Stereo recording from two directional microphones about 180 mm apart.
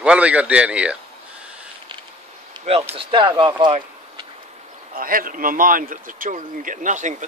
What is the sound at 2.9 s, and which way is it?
Speech, 30° right (ahead or behind).